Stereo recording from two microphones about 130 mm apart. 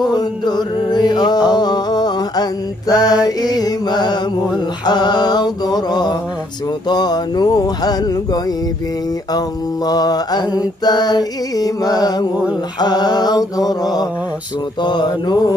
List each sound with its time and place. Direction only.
0.1 s mantra: 35° left (ahead or behind)
2.9 s mantra: 5° right (ahead or behind)
3.3 s mantra: 30° left (ahead or behind)
9.8 s mantra: 30° left (ahead or behind)